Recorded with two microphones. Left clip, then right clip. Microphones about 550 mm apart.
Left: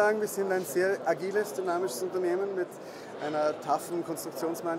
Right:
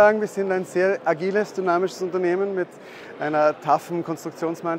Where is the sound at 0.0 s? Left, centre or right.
Right.